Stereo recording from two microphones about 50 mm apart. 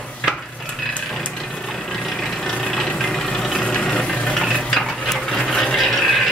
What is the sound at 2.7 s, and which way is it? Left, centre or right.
Vehicle, centre.